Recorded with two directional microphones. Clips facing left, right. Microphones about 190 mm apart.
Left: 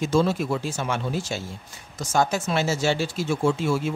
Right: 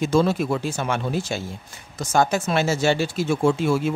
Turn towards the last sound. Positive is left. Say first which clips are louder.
# right 3 dB
turn(degrees=-55)  # may be behind; listen again after turning